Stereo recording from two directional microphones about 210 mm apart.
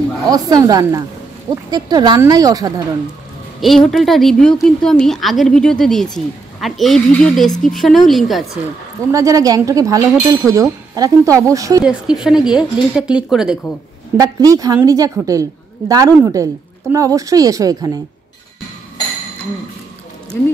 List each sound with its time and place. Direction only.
0.3 s speech: 20° right (ahead or behind)
3.6 s a woman's voice: centre (ahead or behind)
9.1 s speech: 15° right (ahead or behind)
11.8 s a woman's voice: 5° right (ahead or behind)
14.1 s speech: 15° right (ahead or behind)